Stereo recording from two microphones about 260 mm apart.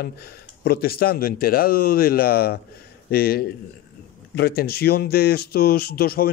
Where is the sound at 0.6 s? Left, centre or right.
Left.